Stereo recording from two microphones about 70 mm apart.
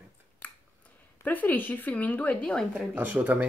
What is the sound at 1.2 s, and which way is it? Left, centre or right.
A woman's voice, left.